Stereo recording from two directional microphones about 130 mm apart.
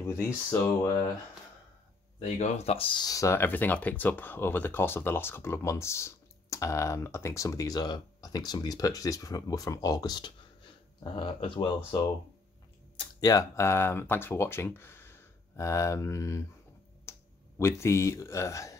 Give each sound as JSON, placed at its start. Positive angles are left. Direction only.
{"t": 0.0, "sound": "speech", "side_deg": 20}
{"t": 2.3, "sound": "speech", "side_deg": 60}
{"t": 3.1, "sound": "speech", "side_deg": 25}
{"t": 12.9, "sound": "speech", "side_deg": 35}
{"t": 17.1, "sound": "a sound", "side_deg": 20}
{"t": 17.6, "sound": "speech", "side_deg": 20}